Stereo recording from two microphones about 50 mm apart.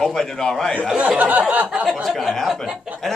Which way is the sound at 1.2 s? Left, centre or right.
Right.